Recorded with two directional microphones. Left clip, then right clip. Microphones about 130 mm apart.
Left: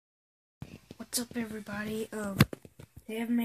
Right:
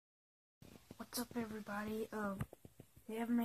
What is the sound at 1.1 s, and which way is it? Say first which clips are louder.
Speech: left 8 dB; 35° left (ahead or behind).